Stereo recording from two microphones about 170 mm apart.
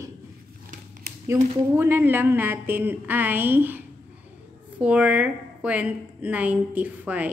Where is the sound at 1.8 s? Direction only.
10° right (ahead or behind).